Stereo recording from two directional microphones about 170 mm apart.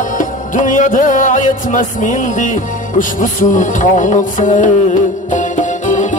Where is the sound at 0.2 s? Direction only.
50° left (ahead or behind).